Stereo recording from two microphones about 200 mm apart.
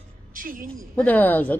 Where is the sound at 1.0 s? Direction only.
10° left (ahead or behind).